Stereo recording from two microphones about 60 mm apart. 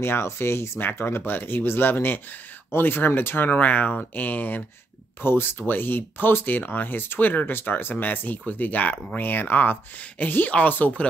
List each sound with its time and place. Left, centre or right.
0.0 s speech: left